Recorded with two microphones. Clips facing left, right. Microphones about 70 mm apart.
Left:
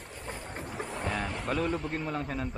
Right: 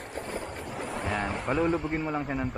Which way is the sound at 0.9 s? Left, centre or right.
Centre.